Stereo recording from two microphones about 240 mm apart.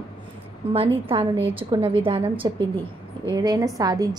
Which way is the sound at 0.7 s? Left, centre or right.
Right.